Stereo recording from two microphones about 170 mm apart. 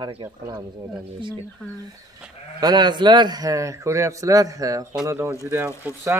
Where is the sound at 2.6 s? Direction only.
25° right (ahead or behind).